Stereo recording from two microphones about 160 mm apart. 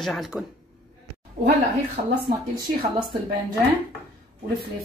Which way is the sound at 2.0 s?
50° right (ahead or behind).